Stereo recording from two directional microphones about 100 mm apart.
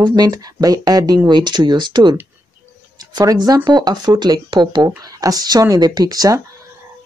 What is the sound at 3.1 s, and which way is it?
Speech, 35° right (ahead or behind).